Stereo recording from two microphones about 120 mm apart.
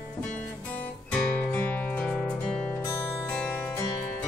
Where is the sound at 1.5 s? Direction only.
15° left (ahead or behind).